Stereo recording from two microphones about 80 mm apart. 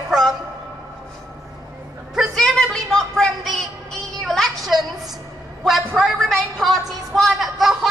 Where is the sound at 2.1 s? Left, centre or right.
Centre.